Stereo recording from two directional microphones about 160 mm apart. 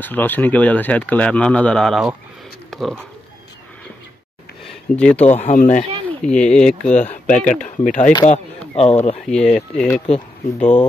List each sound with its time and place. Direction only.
0.0 s speech: 10° left (ahead or behind)
4.6 s a sound: 5° left (ahead or behind)
5.4 s speech: 50° left (ahead or behind)
6.0 s speech: 10° left (ahead or behind)
6.9 s speech: 45° left (ahead or behind)
8.3 s a sound: 40° left (ahead or behind)
9.2 s speech: 5° left (ahead or behind)
10.0 s speech: 40° left (ahead or behind)